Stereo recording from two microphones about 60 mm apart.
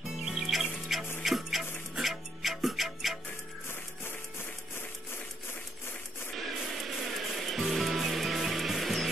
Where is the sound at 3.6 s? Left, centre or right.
Left.